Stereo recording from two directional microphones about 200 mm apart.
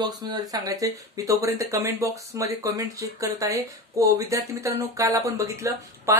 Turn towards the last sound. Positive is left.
turn(degrees=-15)  # may be behind; listen again after turning